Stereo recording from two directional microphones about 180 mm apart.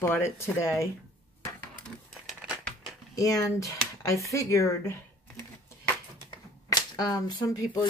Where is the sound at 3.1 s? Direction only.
20° left (ahead or behind).